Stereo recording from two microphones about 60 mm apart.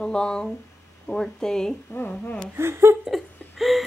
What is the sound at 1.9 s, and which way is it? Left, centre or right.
Speech, left.